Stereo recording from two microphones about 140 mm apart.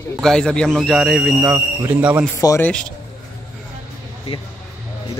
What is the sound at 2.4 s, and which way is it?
Speech, 25° left (ahead or behind).